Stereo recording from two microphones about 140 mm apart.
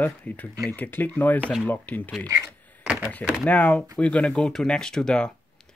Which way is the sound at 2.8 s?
5° right (ahead or behind).